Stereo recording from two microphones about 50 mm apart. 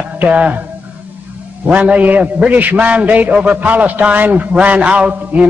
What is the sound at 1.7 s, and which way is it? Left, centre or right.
A man's voice, right.